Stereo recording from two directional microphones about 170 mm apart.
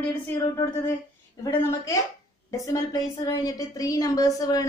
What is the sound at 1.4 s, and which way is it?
A woman's voice, 15° left (ahead or behind).